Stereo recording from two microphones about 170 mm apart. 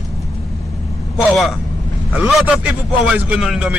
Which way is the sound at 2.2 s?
5° right (ahead or behind).